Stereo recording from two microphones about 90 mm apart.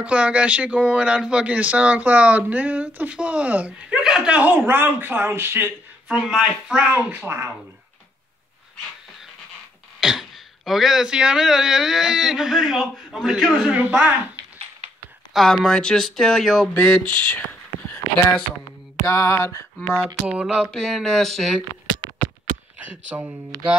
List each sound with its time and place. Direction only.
0.0 s speech: 15° right (ahead or behind)
6.1 s speech: 10° right (ahead or behind); by 7.5 s 25° right (ahead or behind)
9.9 s speech: 5° right (ahead or behind)
13.7 s speech: 15° right (ahead or behind)
15.3 s speech: 5° left (ahead or behind)
19.0 s a sound: 35° left (ahead or behind)
20.2 s speech: 10° right (ahead or behind)
20.5 s speech: 5° left (ahead or behind)
22.8 s speech: 15° right (ahead or behind)